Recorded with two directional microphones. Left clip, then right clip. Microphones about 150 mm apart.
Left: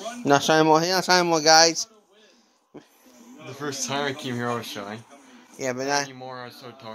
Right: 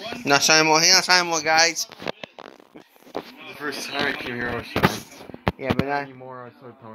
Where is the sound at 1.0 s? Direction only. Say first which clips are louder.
Even; 85° left.